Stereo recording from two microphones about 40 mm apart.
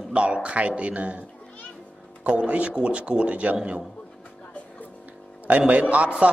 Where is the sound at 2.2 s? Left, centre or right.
Right.